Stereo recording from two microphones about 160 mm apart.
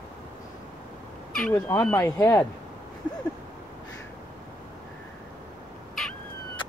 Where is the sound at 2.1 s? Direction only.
20° left (ahead or behind).